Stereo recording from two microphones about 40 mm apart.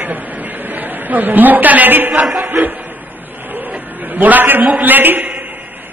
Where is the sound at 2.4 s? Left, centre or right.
Right.